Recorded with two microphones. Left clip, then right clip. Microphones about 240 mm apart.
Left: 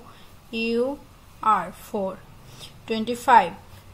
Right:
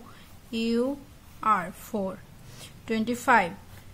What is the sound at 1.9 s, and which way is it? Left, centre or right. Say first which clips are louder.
A woman's voice: left 4 dB; centre.